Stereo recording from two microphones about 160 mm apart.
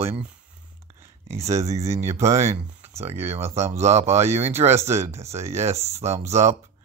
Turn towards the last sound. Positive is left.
turn(degrees=-45)  # may be behind; listen again after turning